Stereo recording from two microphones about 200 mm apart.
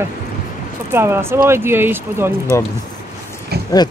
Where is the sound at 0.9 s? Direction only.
10° right (ahead or behind).